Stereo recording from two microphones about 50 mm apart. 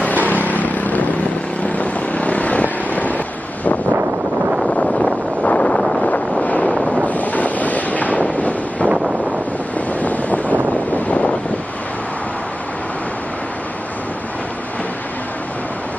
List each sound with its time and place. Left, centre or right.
0.0 s vehicle: left
5.4 s wind noise: left
10.0 s wind noise: left